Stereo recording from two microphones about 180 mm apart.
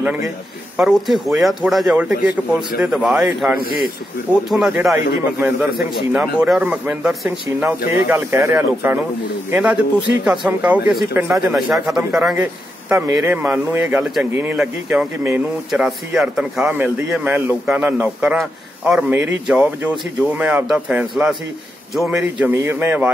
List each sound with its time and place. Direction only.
0.7 s speech: centre (ahead or behind)
3.5 s speech: 55° left (ahead or behind)
4.5 s speech: 5° right (ahead or behind)